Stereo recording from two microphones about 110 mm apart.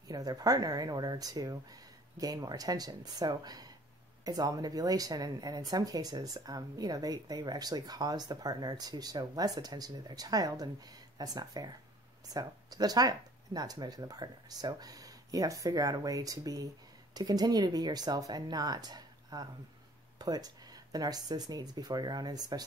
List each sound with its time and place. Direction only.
0.1 s a woman's voice: 35° right (ahead or behind)